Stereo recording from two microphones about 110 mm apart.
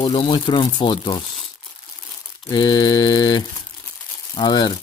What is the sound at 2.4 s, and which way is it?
Speech, 45° left (ahead or behind).